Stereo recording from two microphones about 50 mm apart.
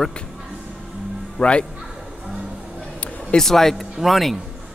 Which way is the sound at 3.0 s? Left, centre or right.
Left.